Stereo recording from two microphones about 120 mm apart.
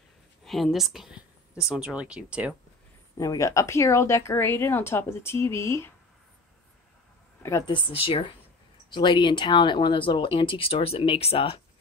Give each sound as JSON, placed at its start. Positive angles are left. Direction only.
{"t": 0.4, "sound": "a sound", "side_deg": 0}
{"t": 1.7, "sound": "speech", "side_deg": -10}
{"t": 3.2, "sound": "a woman's voice", "side_deg": 25}
{"t": 7.6, "sound": "speech", "side_deg": 45}